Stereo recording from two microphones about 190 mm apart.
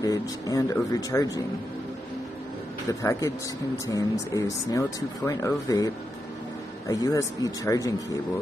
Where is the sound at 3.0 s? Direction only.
15° left (ahead or behind).